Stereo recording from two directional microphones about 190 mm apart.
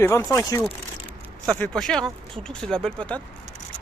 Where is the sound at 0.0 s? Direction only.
15° left (ahead or behind).